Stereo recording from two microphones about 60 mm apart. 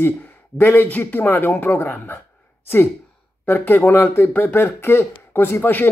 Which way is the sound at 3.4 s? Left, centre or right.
Left.